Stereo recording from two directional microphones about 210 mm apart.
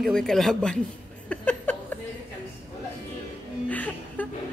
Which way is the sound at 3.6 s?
10° left (ahead or behind).